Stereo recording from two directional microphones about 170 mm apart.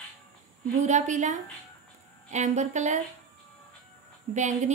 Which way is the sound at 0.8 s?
45° right (ahead or behind).